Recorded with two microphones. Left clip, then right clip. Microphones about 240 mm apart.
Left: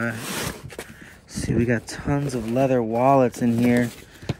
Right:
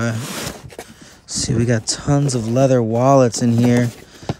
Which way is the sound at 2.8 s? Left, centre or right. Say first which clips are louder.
Right 4 dB; left.